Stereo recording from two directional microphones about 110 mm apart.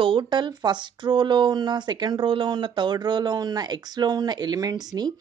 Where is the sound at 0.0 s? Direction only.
50° right (ahead or behind).